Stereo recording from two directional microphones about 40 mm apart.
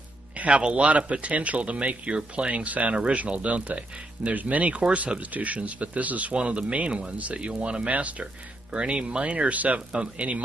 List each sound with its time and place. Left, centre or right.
0.4 s speech: right